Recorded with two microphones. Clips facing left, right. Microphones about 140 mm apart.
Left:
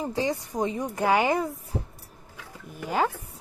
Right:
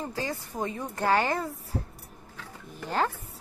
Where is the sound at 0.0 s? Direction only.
20° left (ahead or behind).